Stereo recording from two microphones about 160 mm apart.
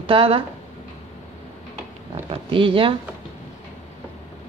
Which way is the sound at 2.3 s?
35° right (ahead or behind).